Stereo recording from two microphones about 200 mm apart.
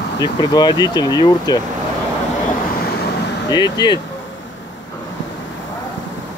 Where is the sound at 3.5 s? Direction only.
20° left (ahead or behind).